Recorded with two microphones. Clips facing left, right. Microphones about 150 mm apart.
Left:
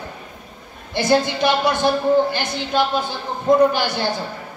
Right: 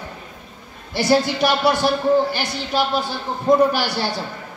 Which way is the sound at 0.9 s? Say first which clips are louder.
Even; 20° left (ahead or behind).